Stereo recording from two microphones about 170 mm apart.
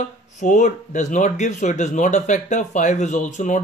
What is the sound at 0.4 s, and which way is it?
Speech, 45° left (ahead or behind).